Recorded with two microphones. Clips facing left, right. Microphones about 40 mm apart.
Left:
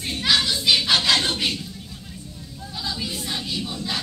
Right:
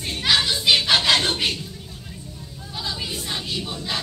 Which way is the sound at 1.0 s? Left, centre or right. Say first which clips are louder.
Right 1 dB; right.